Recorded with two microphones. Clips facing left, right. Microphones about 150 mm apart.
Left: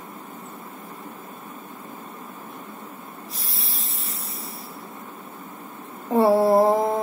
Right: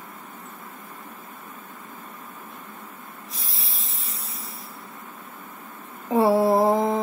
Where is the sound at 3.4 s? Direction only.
Centre (ahead or behind).